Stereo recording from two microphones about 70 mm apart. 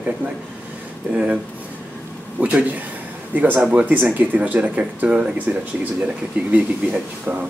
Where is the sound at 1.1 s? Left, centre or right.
Centre.